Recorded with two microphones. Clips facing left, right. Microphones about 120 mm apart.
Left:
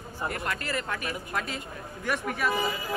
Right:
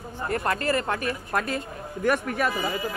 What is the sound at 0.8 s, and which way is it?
Speech, 45° right (ahead or behind).